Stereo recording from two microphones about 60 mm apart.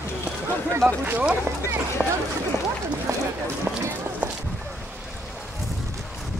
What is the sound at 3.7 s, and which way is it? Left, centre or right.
Run, right.